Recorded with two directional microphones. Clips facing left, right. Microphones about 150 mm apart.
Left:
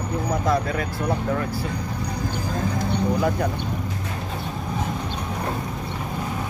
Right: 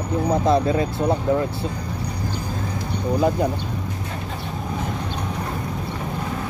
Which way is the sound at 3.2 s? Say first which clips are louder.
Right 3 dB; 20° right (ahead or behind).